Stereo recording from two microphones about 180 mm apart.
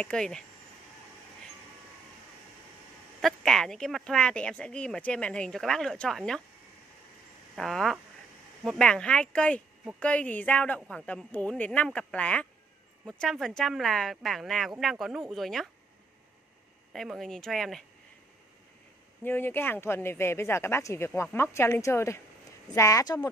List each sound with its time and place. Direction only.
0.0 s speech: 5° left (ahead or behind)
3.2 s speech: centre (ahead or behind)
7.5 s speech: centre (ahead or behind)
16.9 s speech: centre (ahead or behind)
19.2 s speech: 10° left (ahead or behind)